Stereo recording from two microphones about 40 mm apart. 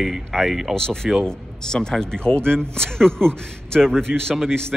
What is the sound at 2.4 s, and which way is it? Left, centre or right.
Speech, right.